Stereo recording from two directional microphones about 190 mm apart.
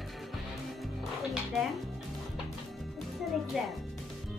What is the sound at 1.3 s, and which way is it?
Speech, centre (ahead or behind).